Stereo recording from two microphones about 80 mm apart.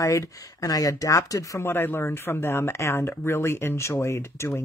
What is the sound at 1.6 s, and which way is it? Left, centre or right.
Speech, left.